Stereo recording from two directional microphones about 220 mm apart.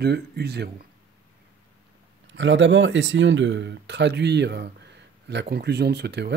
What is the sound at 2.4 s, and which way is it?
Speech, 60° right (ahead or behind).